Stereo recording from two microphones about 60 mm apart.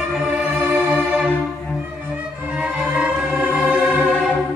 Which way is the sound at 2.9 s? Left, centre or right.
Centre.